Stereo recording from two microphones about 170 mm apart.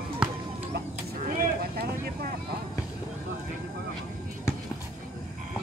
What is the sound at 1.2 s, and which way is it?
Vehicle, 65° right (ahead or behind).